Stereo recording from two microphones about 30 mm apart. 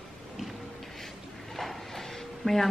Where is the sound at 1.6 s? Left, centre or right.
Centre.